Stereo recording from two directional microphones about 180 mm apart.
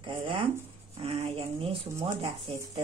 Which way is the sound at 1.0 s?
35° right (ahead or behind).